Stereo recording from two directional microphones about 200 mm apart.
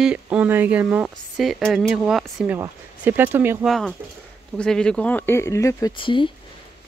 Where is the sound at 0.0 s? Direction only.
5° right (ahead or behind).